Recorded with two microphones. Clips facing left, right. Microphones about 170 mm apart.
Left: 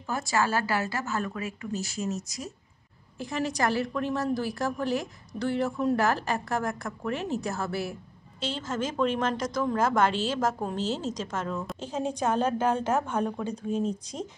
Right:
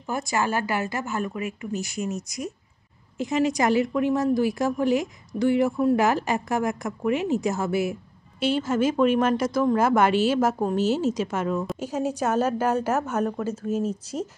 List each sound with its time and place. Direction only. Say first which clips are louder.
0.1 s a woman's voice: right 2 dB; 15° right (ahead or behind)